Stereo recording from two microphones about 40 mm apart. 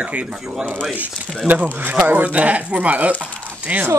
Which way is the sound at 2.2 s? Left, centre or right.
Right.